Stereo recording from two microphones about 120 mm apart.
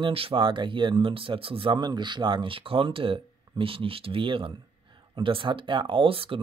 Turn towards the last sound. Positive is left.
turn(degrees=-50)  # may be behind; listen again after turning